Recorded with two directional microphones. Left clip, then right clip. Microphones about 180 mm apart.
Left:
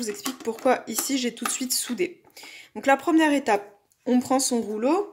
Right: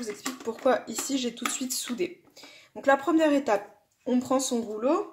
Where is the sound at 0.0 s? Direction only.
30° left (ahead or behind).